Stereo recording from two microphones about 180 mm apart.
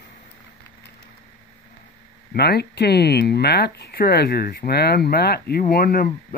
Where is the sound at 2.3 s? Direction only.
65° left (ahead or behind).